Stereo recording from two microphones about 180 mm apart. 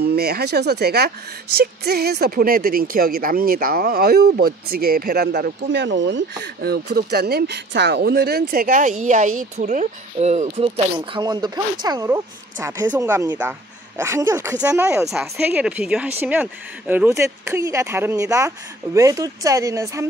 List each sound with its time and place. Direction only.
0.0 s speech: 60° right (ahead or behind); by 10.7 s 40° right (ahead or behind)
11.1 s a woman's voice: 25° right (ahead or behind)